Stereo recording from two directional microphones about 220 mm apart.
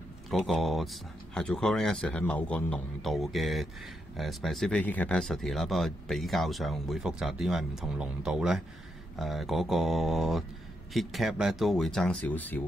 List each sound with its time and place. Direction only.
0.3 s speech: centre (ahead or behind)